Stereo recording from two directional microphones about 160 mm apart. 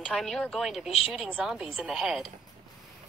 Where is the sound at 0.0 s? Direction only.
5° left (ahead or behind).